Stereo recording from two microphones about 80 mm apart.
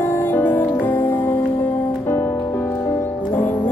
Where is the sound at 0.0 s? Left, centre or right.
Left.